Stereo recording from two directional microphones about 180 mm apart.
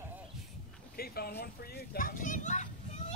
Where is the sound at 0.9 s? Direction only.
60° left (ahead or behind).